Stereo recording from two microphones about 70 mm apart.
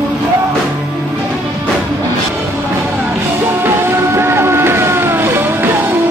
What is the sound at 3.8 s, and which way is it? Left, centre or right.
Music, right.